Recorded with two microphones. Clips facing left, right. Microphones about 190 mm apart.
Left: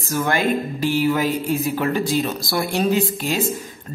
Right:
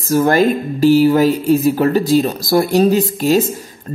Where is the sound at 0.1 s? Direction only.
40° right (ahead or behind).